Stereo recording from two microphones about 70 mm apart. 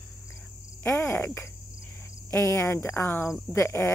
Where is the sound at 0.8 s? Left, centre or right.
Left.